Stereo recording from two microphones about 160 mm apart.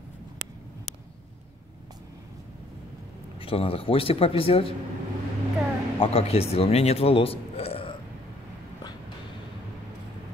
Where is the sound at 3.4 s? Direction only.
35° left (ahead or behind).